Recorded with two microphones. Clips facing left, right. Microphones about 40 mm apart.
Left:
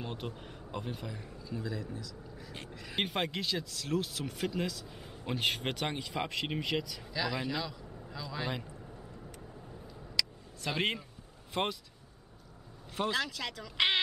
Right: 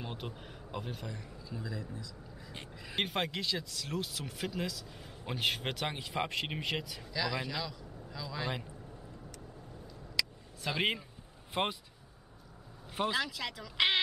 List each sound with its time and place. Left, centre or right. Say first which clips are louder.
0.0 s speech: left 2 dB; centre
3.0 s speech: left 1 dB; centre
7.1 s a man's voice: even; centre
10.2 s a sound: left 1 dB; centre
10.7 s speech: even; centre
12.9 s speech: even; centre